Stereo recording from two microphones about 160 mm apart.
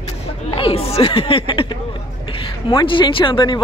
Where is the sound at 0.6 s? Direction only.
35° left (ahead or behind).